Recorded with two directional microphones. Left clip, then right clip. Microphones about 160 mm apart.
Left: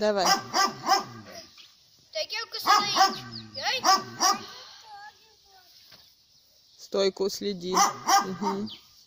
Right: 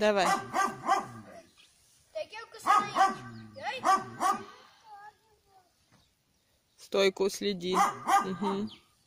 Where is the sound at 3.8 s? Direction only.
65° right (ahead or behind).